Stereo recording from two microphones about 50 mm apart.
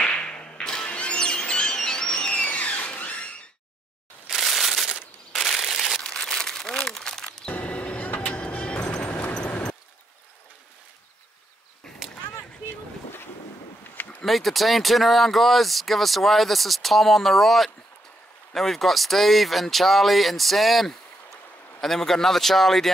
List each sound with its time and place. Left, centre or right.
0.0 s whip: left
0.8 s music: left
4.3 s a sound: centre
6.0 s crumpling: centre
7.4 s vehicle: left
9.3 s vehicle: centre
14.2 s speech: centre